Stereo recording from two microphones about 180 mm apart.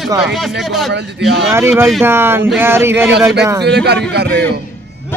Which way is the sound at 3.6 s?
70° right (ahead or behind).